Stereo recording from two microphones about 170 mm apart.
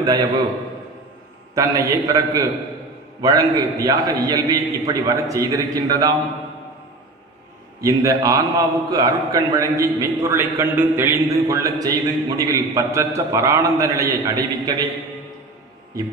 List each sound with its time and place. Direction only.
0.0 s a man's voice: 25° right (ahead or behind)
1.5 s a man's voice: 20° right (ahead or behind)
7.8 s a man's voice: 20° right (ahead or behind)